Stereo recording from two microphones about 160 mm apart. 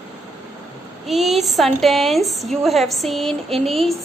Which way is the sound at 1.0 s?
Centre (ahead or behind).